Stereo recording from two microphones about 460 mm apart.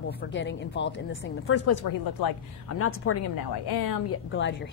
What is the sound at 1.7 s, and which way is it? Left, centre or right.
Speech, left.